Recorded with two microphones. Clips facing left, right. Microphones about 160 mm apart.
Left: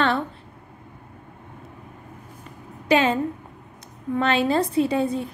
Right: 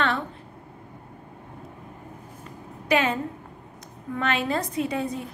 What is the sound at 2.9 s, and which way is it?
Speech, 30° left (ahead or behind).